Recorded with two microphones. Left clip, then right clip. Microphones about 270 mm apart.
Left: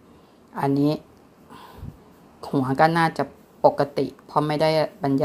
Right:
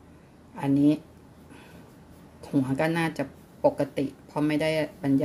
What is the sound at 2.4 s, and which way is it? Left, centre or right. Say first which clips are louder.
Speech: left 7 dB; centre.